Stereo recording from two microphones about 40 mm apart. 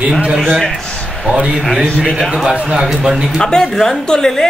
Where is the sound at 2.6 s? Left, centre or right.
Right.